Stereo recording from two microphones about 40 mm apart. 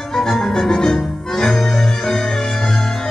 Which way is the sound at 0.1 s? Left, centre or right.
Centre.